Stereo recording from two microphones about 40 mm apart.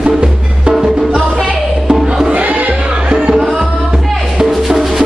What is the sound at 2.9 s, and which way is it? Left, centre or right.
Music, right.